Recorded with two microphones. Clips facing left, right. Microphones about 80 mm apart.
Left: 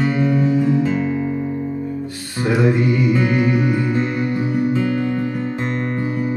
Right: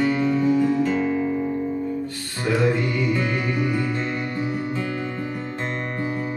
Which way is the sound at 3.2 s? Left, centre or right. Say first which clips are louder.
Left 7 dB; centre.